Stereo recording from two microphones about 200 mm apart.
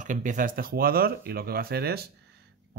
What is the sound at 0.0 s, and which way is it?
Speech, 40° right (ahead or behind).